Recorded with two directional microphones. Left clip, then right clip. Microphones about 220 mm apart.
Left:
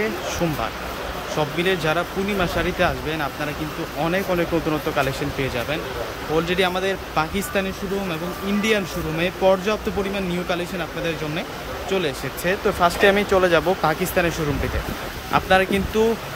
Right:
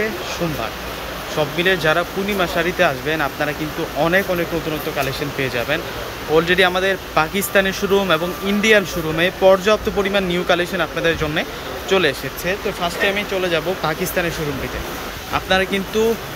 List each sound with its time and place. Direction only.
1.6 s speech: 5° left (ahead or behind)
12.4 s speech: 20° left (ahead or behind)
15.3 s speech: 10° left (ahead or behind)